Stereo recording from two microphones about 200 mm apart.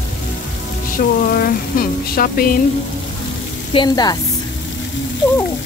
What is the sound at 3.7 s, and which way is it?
Speech, 20° left (ahead or behind).